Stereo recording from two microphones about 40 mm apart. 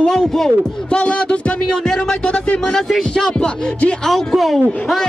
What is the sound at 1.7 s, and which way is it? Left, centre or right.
Speech, centre.